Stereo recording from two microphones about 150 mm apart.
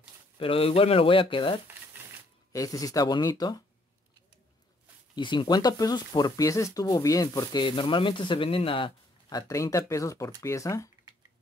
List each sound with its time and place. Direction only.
0.4 s speech: 40° left (ahead or behind)
2.5 s speech: 25° left (ahead or behind)
5.1 s speech: 30° left (ahead or behind)
9.5 s speech: 20° left (ahead or behind)